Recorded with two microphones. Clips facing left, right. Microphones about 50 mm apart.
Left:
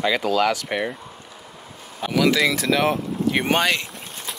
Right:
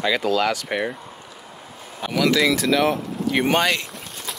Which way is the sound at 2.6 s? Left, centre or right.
Left.